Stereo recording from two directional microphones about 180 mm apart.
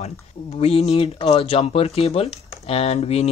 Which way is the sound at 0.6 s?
35° left (ahead or behind).